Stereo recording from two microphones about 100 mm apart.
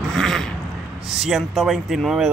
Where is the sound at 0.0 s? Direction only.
5° left (ahead or behind).